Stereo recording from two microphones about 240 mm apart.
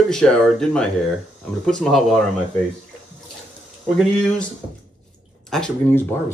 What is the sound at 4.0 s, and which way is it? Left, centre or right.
Speech, centre.